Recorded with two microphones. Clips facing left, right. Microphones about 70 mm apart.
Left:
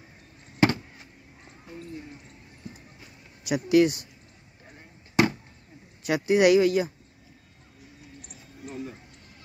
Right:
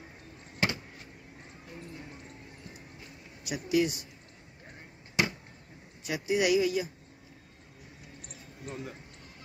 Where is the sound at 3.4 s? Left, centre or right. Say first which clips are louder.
Left 8 dB; left.